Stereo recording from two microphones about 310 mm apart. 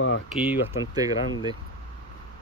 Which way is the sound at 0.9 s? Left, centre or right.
Centre.